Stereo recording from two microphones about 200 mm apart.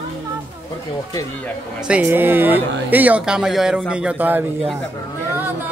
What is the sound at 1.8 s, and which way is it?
Speech, 5° right (ahead or behind).